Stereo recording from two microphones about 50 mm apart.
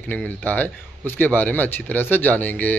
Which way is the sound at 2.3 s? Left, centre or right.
Left.